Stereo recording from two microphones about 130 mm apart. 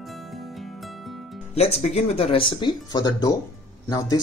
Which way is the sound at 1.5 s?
55° left (ahead or behind).